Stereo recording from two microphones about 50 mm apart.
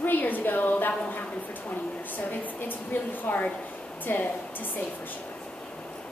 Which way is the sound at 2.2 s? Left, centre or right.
Left.